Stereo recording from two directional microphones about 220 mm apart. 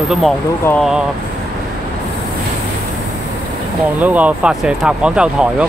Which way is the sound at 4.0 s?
5° right (ahead or behind).